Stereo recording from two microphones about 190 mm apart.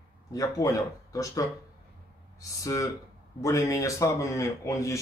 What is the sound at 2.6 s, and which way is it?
A man's voice, 15° left (ahead or behind).